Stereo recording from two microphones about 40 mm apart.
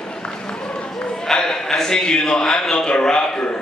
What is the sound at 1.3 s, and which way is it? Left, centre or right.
A man's voice, centre.